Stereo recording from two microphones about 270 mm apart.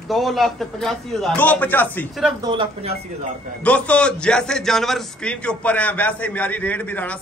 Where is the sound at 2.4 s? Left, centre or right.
Centre.